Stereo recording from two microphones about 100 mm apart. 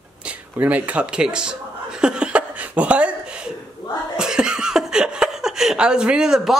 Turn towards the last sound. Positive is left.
turn(degrees=-5)  # may be behind; listen again after turning